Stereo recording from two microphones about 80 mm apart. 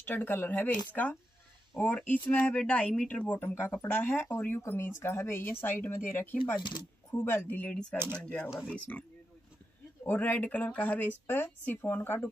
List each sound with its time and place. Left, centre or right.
0.0 s speech: left
6.6 s speech: left
7.2 s speech: left
10.0 s speech: left